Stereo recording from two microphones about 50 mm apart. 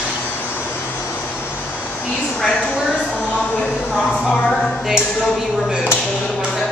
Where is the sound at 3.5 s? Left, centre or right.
Left.